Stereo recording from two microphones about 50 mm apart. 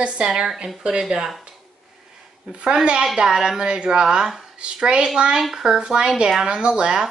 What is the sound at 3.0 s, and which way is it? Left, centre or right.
Speech, centre.